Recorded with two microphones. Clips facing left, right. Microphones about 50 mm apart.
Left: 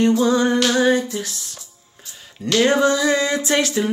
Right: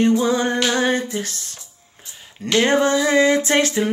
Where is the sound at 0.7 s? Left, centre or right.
Right.